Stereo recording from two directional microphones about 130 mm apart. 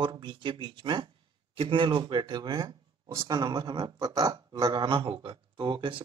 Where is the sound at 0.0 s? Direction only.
40° right (ahead or behind).